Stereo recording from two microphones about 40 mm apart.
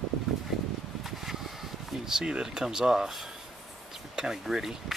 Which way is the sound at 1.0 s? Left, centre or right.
Centre.